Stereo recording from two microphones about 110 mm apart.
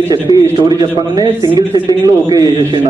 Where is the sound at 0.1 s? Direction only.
35° right (ahead or behind).